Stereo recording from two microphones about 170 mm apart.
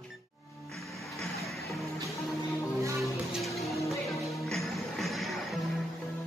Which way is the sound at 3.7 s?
20° left (ahead or behind).